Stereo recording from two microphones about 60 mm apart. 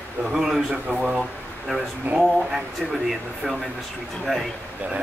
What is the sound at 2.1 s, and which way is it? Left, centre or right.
Speech, right.